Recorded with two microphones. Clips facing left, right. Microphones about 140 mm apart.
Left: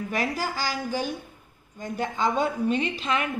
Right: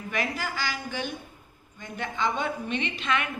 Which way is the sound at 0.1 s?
40° left (ahead or behind).